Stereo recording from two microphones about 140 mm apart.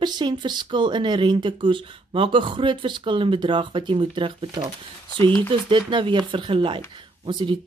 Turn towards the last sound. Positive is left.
turn(degrees=-35)  # may be behind; listen again after turning